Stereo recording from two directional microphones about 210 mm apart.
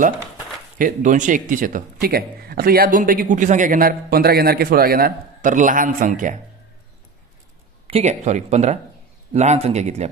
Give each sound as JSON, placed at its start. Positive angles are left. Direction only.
{"t": 0.7, "sound": "a man's voice", "side_deg": -40}
{"t": 7.8, "sound": "a man's voice", "side_deg": -30}